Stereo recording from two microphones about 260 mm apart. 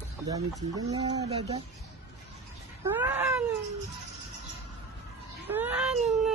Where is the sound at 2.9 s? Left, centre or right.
Centre.